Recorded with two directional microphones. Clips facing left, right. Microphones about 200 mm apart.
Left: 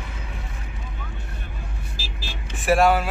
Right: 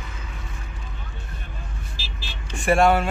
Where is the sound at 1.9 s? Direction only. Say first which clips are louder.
Left 3 dB; 45° left (ahead or behind).